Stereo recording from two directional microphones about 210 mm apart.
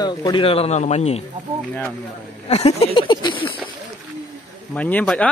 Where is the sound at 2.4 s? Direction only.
30° left (ahead or behind).